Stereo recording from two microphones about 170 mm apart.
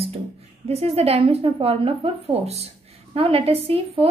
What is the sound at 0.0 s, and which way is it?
A woman's voice, 35° right (ahead or behind).